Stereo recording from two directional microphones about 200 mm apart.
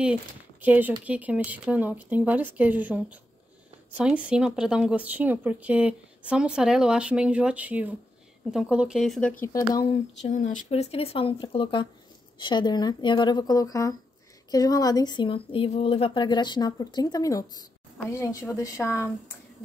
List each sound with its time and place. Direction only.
0.0 s speech: 5° right (ahead or behind)
9.4 s speech: 15° left (ahead or behind)
10.2 s speech: 40° left (ahead or behind); by 19.0 s 15° left (ahead or behind)